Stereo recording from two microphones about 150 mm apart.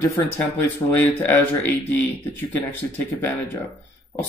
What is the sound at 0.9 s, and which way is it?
Speech, 15° left (ahead or behind).